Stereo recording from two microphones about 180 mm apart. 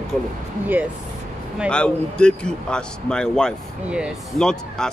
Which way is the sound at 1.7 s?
5° left (ahead or behind).